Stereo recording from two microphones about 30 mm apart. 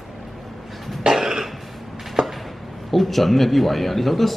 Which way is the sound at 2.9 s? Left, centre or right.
Centre.